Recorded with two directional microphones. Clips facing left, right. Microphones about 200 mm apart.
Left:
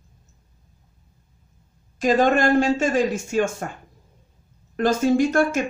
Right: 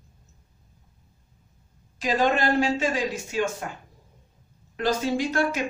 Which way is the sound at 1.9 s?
50° left (ahead or behind).